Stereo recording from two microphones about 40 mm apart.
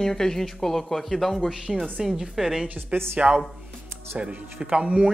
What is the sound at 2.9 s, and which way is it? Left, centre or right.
Speech, right.